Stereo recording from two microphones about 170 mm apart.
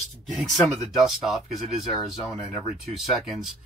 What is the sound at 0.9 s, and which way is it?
Speech, centre (ahead or behind).